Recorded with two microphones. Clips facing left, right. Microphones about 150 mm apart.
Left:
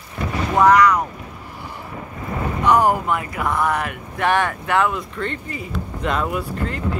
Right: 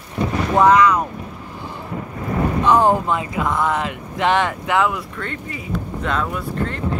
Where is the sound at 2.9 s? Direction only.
20° right (ahead or behind).